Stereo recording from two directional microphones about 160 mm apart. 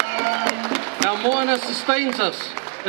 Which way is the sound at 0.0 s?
15° right (ahead or behind).